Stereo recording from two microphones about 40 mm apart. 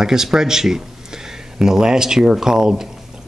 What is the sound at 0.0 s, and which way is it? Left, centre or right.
Speech, centre.